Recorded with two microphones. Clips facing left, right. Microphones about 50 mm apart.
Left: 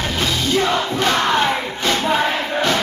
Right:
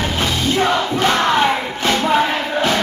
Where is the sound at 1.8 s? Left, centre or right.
Centre.